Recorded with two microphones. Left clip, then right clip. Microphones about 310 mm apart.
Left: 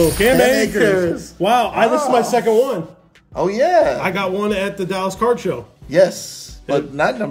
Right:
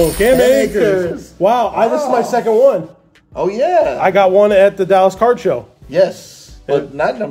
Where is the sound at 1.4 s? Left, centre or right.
Centre.